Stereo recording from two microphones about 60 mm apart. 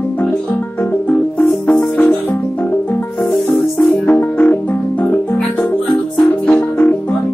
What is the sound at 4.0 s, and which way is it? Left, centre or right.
Music, left.